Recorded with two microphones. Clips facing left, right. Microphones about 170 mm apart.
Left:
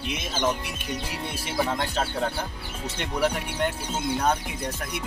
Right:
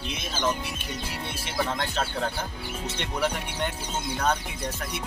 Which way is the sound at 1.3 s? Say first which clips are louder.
Left 3 dB; 10° left (ahead or behind).